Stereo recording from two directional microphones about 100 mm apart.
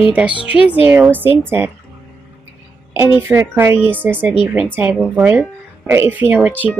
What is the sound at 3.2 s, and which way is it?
Speech, 25° right (ahead or behind).